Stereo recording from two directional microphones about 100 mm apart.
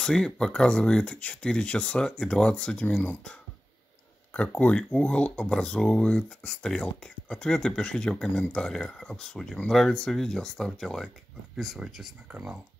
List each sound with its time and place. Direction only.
0.0 s speech: 5° left (ahead or behind)
12.3 s speech: 10° right (ahead or behind)